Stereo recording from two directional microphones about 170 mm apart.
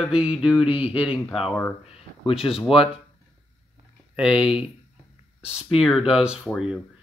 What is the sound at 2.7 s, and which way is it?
Speech, 35° left (ahead or behind).